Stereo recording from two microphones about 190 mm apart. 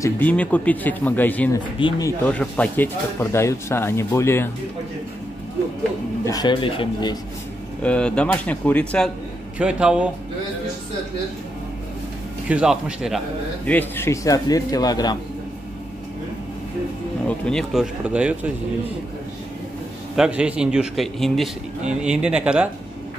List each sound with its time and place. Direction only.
0.0 s speech: 10° left (ahead or behind)
1.8 s speech: 20° left (ahead or behind)
2.2 s speech: 5° left (ahead or behind)
6.2 s speech: 20° left (ahead or behind)
7.8 s a man's voice: 5° left (ahead or behind)
9.6 s a man's voice: 5° right (ahead or behind)
12.4 s a man's voice: 5° right (ahead or behind)
13.7 s speech: 10° left (ahead or behind)
17.3 s speech: 5° left (ahead or behind)
20.2 s a man's voice: 5° right (ahead or behind)